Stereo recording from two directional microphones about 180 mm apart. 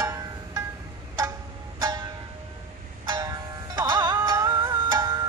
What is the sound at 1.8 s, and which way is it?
Music, 20° right (ahead or behind).